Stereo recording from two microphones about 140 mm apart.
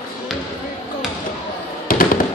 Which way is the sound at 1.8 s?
90° left.